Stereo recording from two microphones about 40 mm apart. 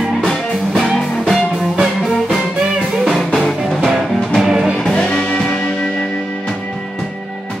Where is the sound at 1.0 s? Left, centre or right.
Left.